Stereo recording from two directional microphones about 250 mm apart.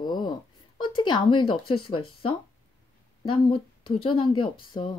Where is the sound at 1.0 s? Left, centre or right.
Centre.